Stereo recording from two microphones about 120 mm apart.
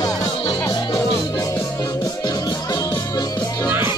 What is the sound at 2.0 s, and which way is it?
Music, 35° left (ahead or behind).